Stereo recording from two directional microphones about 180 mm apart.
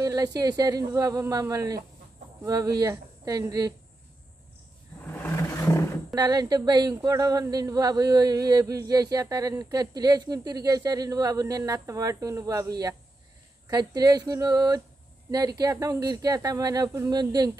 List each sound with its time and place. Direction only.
0.0 s speech: 20° right (ahead or behind)
5.0 s vehicle: 15° left (ahead or behind)
6.1 s speech: 20° right (ahead or behind)